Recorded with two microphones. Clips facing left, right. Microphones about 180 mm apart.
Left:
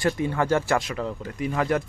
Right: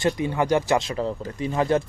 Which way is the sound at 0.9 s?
30° right (ahead or behind).